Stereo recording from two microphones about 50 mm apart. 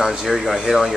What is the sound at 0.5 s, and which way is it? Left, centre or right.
Speech, centre.